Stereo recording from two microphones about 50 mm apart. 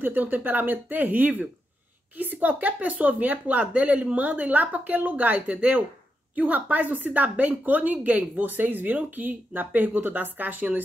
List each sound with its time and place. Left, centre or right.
0.0 s a woman's voice: right